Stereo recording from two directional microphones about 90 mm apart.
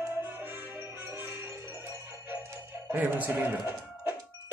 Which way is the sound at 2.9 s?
20° right (ahead or behind).